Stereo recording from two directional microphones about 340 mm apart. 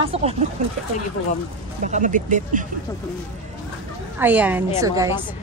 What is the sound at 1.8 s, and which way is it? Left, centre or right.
Speech, right.